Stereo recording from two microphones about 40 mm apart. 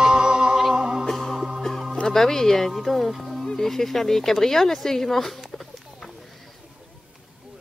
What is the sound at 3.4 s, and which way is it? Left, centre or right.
Speech, centre.